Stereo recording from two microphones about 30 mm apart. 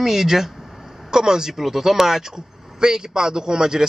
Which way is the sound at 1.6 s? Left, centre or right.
Centre.